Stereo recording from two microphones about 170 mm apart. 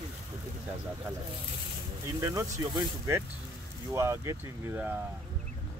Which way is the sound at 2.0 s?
20° right (ahead or behind).